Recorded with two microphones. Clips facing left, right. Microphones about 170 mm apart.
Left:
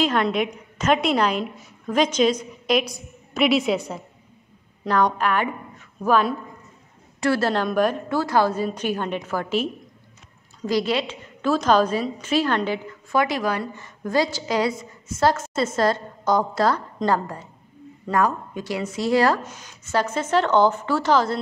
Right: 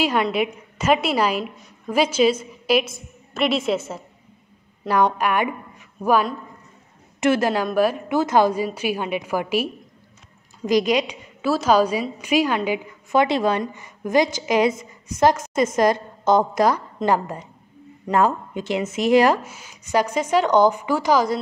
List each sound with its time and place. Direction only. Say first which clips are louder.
0.0 s a woman's voice: even; 5° right (ahead or behind)
8.1 s a woman's voice: right 3 dB; 20° right (ahead or behind)
13.2 s a woman's voice: right 4 dB; 25° right (ahead or behind)